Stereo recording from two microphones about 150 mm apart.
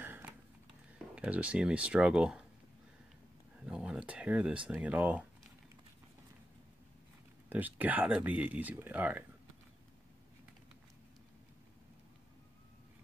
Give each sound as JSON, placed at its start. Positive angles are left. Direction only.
{"t": 0.0, "sound": "a sound", "side_deg": -15}
{"t": 0.9, "sound": "speech", "side_deg": -10}
{"t": 3.5, "sound": "speech", "side_deg": -5}
{"t": 7.4, "sound": "speech", "side_deg": -10}